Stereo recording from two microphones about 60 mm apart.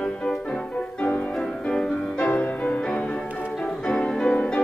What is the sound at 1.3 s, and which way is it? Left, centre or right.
Music, centre.